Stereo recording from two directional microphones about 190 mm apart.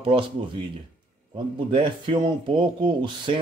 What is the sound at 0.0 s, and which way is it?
Speech, 30° right (ahead or behind).